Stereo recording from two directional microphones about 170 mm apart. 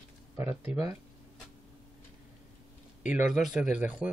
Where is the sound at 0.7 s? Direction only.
15° right (ahead or behind).